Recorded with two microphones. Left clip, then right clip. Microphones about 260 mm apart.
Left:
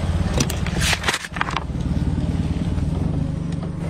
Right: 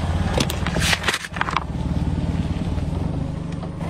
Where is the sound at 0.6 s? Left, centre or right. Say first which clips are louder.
Even; centre.